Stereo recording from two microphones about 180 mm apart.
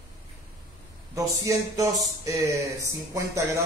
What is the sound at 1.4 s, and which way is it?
Music, 20° right (ahead or behind).